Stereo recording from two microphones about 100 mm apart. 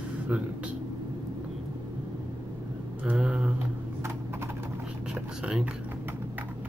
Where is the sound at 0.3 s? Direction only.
15° right (ahead or behind).